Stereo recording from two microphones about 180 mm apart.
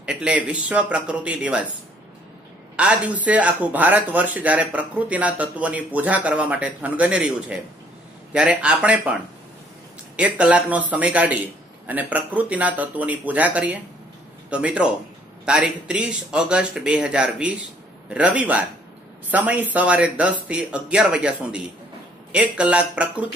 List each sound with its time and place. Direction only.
0.0 s speech: 5° right (ahead or behind)
2.7 s a man's voice: 5° right (ahead or behind)